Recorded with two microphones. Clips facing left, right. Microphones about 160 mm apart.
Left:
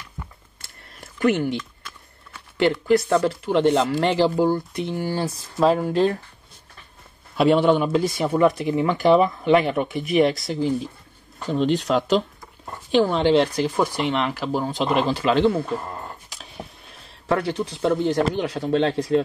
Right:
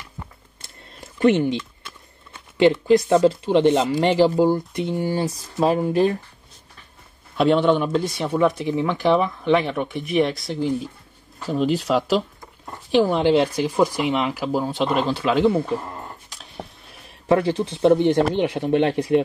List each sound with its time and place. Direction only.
0.6 s a sound: 25° right (ahead or behind)
2.5 s speech: 20° right (ahead or behind)
7.3 s speech: 5° left (ahead or behind)
17.3 s speech: 20° right (ahead or behind)